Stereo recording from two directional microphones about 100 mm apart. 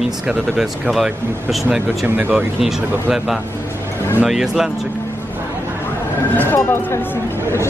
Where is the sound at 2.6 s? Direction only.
5° right (ahead or behind).